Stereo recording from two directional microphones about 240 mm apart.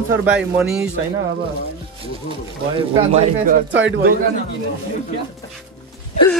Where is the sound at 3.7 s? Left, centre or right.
Right.